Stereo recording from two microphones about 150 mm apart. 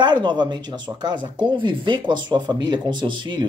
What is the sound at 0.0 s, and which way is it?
Speech, 30° right (ahead or behind).